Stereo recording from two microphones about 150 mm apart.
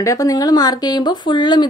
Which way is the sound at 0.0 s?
25° left (ahead or behind).